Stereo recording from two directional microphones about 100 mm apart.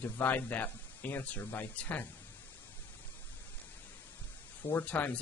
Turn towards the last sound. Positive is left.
turn(degrees=15)  # may be behind; listen again after turning